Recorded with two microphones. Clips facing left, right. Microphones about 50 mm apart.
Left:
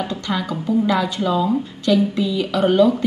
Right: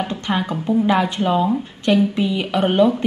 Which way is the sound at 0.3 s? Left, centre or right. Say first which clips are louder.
Right 1 dB; right.